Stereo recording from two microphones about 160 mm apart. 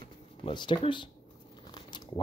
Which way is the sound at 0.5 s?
30° left (ahead or behind).